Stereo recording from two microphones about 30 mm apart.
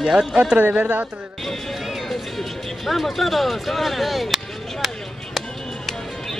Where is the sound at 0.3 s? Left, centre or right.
Right.